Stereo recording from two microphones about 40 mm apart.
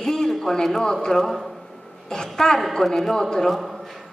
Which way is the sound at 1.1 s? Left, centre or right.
Centre.